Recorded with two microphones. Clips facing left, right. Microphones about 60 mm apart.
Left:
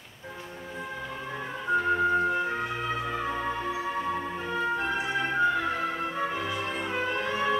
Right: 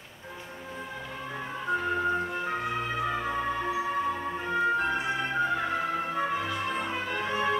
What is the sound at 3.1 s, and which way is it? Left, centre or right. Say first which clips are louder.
Music: even; centre.